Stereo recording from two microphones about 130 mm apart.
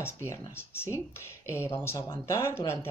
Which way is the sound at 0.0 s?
20° left (ahead or behind).